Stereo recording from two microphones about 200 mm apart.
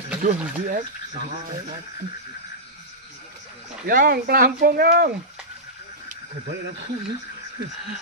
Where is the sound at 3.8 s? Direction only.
45° right (ahead or behind).